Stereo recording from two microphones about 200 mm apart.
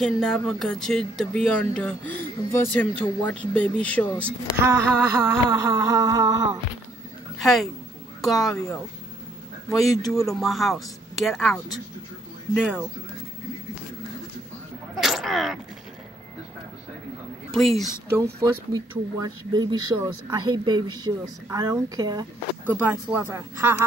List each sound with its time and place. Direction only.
0.0 s speech: 5° left (ahead or behind)
4.6 s speech: 10° right (ahead or behind)
7.3 s speech: centre (ahead or behind)
9.8 s speech: centre (ahead or behind)
15.0 s sneeze: centre (ahead or behind)
17.6 s speech: centre (ahead or behind)
18.1 s speech: 15° right (ahead or behind)